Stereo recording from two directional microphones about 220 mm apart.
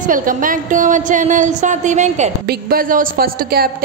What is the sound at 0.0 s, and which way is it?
A woman's voice, 40° right (ahead or behind).